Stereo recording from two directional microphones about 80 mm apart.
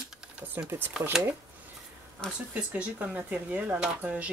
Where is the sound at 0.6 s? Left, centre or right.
Right.